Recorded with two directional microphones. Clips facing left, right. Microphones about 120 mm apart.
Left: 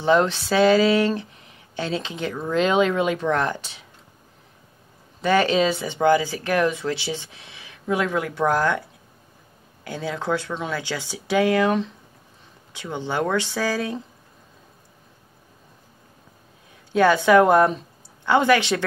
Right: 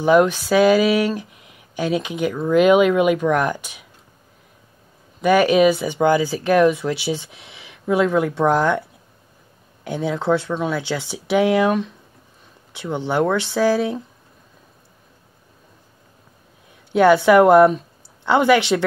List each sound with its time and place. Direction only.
0.0 s speech: 10° right (ahead or behind)
5.2 s speech: 15° right (ahead or behind)
9.8 s speech: 15° right (ahead or behind)
16.9 s speech: 15° right (ahead or behind)